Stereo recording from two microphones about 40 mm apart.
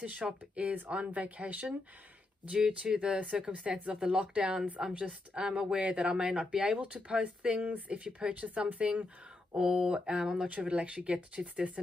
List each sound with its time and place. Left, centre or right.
0.0 s speech: right
2.5 s speech: right
9.6 s speech: right
9.8 s speech: right